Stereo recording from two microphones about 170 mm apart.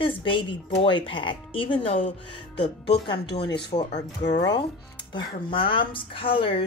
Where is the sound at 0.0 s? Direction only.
30° left (ahead or behind).